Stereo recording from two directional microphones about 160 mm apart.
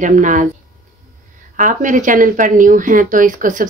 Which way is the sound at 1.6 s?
55° right (ahead or behind).